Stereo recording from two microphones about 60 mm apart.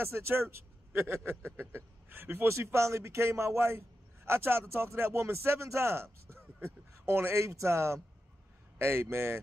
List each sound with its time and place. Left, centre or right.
0.0 s a man's voice: right